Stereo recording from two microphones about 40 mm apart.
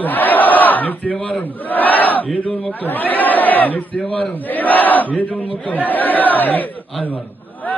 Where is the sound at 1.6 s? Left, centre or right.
Left.